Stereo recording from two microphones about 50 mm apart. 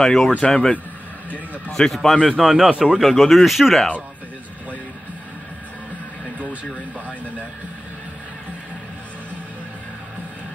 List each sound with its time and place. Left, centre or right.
0.0 s speech: centre
3.0 s speech: centre